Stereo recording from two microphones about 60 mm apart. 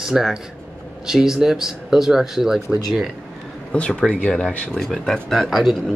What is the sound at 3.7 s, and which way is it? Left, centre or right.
Speech, centre.